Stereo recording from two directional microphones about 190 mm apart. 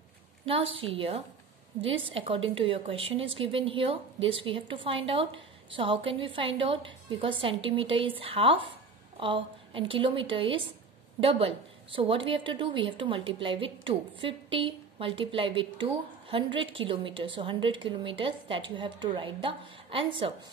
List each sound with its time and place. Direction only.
0.5 s a woman's voice: 30° right (ahead or behind)